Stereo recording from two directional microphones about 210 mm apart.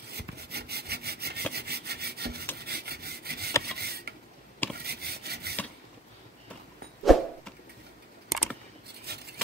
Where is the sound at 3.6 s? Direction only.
50° right (ahead or behind).